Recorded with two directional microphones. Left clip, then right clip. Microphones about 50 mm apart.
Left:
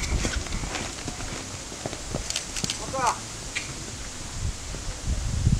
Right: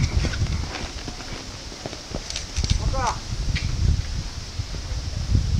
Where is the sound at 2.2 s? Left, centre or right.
Left.